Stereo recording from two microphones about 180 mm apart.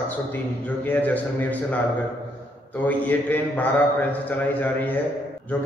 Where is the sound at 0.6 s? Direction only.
10° left (ahead or behind).